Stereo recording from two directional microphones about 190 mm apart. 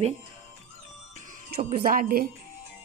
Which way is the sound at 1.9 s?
50° right (ahead or behind).